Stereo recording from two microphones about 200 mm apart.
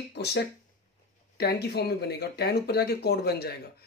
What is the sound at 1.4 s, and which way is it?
Speech, 55° left (ahead or behind).